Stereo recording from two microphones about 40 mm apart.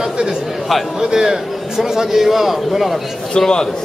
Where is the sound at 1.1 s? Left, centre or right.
Centre.